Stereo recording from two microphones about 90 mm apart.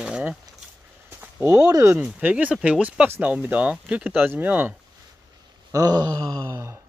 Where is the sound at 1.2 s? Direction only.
25° right (ahead or behind).